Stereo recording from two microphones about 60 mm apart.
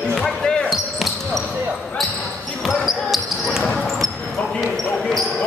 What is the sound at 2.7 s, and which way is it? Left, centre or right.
Basketball bounce, centre.